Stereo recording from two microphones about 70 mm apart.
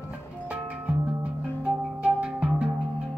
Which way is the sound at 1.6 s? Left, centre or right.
Centre.